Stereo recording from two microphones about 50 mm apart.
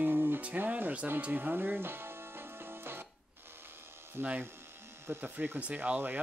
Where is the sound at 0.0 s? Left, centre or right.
Right.